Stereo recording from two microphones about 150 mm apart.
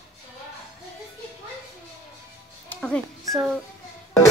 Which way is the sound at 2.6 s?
5° left (ahead or behind).